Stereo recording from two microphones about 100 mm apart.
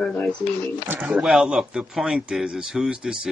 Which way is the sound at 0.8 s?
20° right (ahead or behind).